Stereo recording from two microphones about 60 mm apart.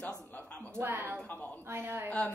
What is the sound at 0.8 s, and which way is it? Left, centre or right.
A woman's voice, right.